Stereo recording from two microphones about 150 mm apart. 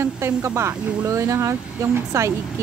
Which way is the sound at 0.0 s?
15° right (ahead or behind).